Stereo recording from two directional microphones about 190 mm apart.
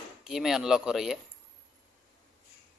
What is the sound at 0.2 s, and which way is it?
Speech, centre (ahead or behind).